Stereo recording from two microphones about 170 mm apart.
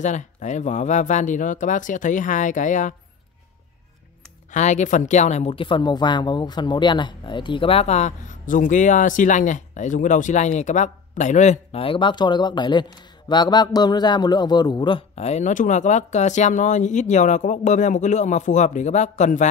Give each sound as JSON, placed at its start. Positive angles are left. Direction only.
{"t": 0.0, "sound": "a woman's voice", "side_deg": 45}
{"t": 4.5, "sound": "a woman's voice", "side_deg": 45}